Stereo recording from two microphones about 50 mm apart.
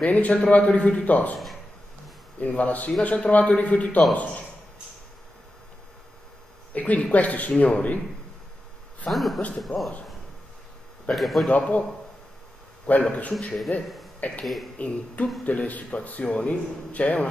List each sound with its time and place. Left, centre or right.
0.0 s speech: left
2.4 s speech: left
6.7 s speech: left
9.1 s a man's voice: centre
9.7 s speech: left
11.1 s a man's voice: centre
11.4 s speech: left
12.9 s speech: left
13.3 s a man's voice: centre
14.8 s speech: left